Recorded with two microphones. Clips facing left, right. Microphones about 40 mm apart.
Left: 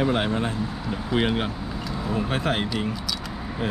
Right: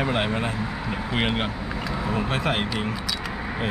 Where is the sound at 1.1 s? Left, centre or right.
Right.